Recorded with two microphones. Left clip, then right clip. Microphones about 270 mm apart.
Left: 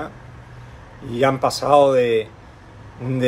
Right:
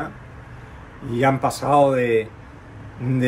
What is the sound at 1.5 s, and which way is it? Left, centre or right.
Speech, left.